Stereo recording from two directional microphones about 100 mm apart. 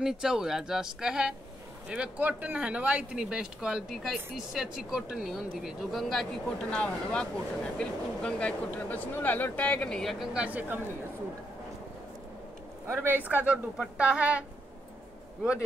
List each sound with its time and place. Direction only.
0.0 s speech: 5° right (ahead or behind)
10.4 s speech: 15° right (ahead or behind)
12.8 s a woman's voice: 20° right (ahead or behind)